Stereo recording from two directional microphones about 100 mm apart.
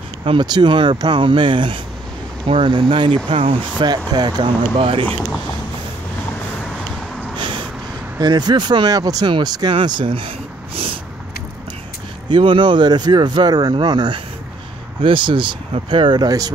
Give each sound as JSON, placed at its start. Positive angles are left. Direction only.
{"t": 0.4, "sound": "speech", "side_deg": -50}
{"t": 3.7, "sound": "speech", "side_deg": -45}
{"t": 4.7, "sound": "speech", "side_deg": -65}
{"t": 7.3, "sound": "snort", "side_deg": -55}
{"t": 8.2, "sound": "speech", "side_deg": -45}
{"t": 12.3, "sound": "speech", "side_deg": -55}
{"t": 15.0, "sound": "speech", "side_deg": -55}